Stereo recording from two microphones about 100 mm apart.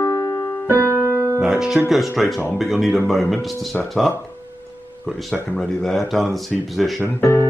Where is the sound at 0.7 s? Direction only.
30° right (ahead or behind).